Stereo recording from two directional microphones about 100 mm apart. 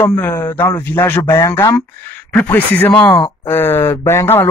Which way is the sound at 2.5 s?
20° left (ahead or behind).